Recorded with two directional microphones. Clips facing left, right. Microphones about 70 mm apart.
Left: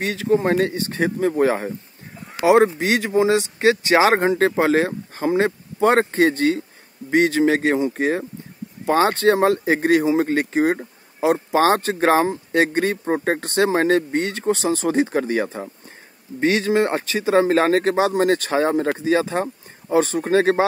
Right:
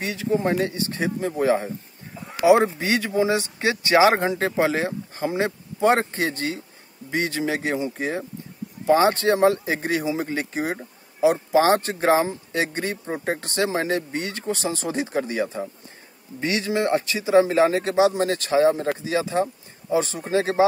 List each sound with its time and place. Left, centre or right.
0.0 s speech: left
2.5 s speech: left
3.9 s speech: left
5.9 s speech: left
17.8 s speech: left
18.9 s speech: left